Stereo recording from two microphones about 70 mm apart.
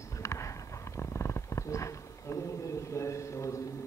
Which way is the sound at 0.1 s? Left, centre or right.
Left.